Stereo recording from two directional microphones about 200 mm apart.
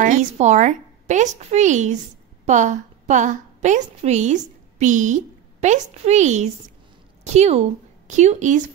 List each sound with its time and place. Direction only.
0.0 s a woman's voice: 40° right (ahead or behind)